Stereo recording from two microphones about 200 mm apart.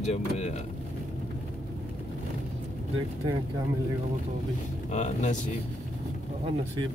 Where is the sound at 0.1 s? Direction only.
35° left (ahead or behind).